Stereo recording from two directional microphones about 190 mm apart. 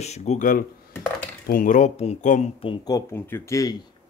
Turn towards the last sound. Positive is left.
turn(degrees=15)  # may be behind; listen again after turning